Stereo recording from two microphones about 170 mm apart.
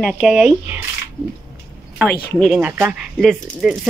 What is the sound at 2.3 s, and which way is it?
Speech, centre (ahead or behind).